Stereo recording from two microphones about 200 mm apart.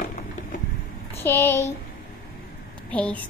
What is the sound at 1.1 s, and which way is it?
Speech, 10° left (ahead or behind).